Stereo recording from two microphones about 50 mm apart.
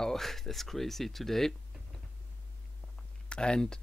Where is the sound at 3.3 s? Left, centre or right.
Centre.